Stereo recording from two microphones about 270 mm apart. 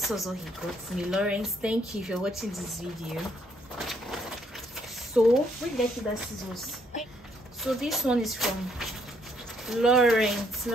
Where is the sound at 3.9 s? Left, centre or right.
Centre.